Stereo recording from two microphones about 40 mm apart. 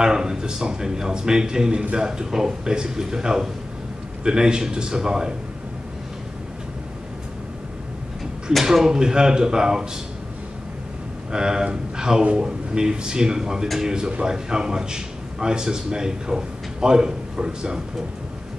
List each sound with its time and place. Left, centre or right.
0.0 s a man's voice: centre
8.6 s a man's voice: centre
11.3 s a man's voice: centre